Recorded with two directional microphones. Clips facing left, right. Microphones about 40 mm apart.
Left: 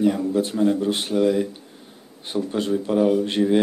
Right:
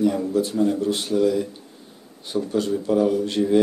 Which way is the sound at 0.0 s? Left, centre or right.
Left.